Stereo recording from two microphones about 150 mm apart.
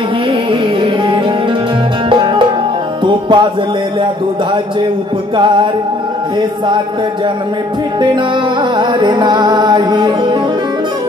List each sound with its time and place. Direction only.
2.0 s music: 35° right (ahead or behind)
5.4 s music: 30° right (ahead or behind)
8.7 s music: 30° right (ahead or behind)